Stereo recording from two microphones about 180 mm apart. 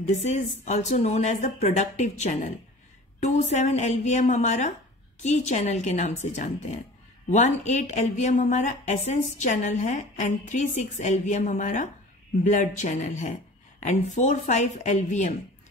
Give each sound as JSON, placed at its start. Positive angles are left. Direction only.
{"t": 0.0, "sound": "speech", "side_deg": 40}